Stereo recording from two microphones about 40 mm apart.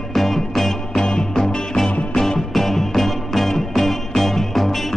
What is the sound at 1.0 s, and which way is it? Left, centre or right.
Music, centre.